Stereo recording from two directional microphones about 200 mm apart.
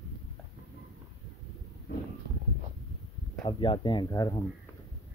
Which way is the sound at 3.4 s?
25° left (ahead or behind).